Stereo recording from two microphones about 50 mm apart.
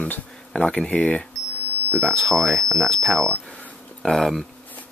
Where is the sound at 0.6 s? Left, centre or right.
Left.